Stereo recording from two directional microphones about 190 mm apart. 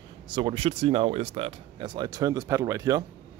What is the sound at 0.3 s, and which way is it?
Speech, 25° right (ahead or behind).